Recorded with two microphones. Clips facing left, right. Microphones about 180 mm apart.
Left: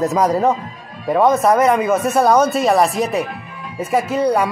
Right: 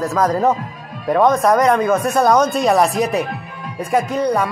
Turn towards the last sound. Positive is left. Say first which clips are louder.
# left 1 dB
turn(degrees=10)  # may be behind; listen again after turning